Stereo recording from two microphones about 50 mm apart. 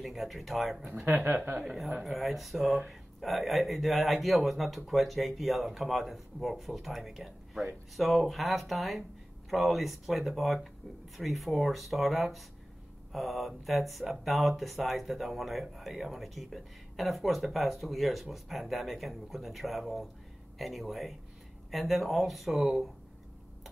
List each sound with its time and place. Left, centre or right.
0.0 s speech: centre
1.0 s speech: right
1.6 s speech: centre